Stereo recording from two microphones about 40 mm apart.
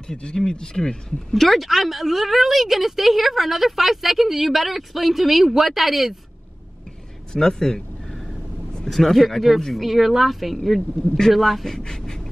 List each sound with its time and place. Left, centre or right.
0.0 s speech: left
1.3 s a woman's voice: centre
7.3 s speech: centre
8.8 s a woman's voice: centre
11.6 s speech: centre